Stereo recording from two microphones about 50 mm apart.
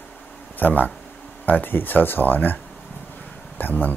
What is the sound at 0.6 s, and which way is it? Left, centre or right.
Speech, left.